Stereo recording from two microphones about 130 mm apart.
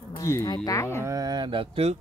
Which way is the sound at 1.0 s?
30° right (ahead or behind).